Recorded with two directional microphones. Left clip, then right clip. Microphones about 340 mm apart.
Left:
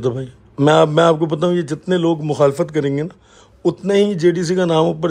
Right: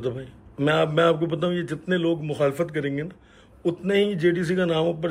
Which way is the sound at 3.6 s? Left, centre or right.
Centre.